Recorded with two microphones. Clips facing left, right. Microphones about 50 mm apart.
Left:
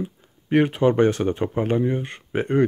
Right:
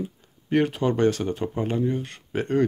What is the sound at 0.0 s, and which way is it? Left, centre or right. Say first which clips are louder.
Speech: left 2 dB; centre.